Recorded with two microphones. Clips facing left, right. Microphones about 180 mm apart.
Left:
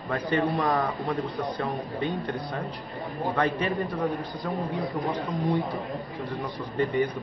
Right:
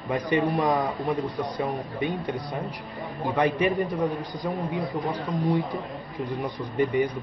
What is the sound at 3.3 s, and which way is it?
Speech, 15° right (ahead or behind).